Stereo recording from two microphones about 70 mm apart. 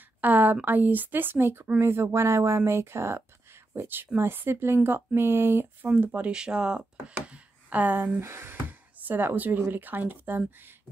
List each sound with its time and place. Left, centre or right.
0.2 s speech: right
5.9 s speech: right
6.3 s speech: centre; by 10.4 s right